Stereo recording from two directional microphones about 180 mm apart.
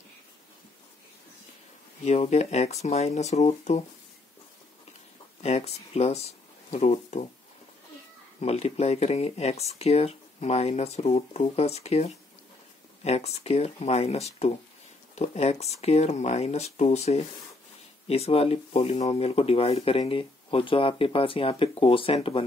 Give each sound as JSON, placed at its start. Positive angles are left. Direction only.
{"t": 2.0, "sound": "speech", "side_deg": 35}
{"t": 5.4, "sound": "speech", "side_deg": 35}
{"t": 8.4, "sound": "speech", "side_deg": 35}